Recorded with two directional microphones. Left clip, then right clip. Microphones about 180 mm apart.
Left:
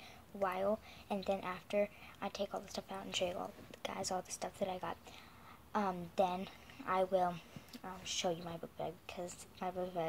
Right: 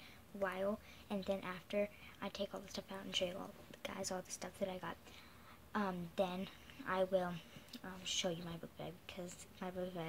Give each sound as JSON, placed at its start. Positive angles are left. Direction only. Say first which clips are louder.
{"t": 0.4, "sound": "speech", "louder": "left 4 dB", "side_deg": -15}